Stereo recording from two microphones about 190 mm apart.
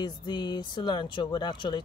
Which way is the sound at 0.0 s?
25° left (ahead or behind).